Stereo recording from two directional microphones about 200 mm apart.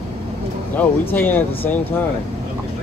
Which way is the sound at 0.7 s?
10° left (ahead or behind).